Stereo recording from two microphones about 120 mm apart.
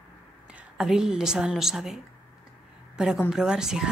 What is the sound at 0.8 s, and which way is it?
A woman's voice, 5° right (ahead or behind).